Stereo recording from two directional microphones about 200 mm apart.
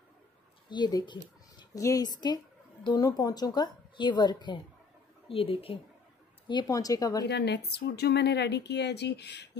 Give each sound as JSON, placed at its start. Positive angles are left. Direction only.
{"t": 0.7, "sound": "a woman's voice", "side_deg": 20}
{"t": 7.2, "sound": "speech", "side_deg": 60}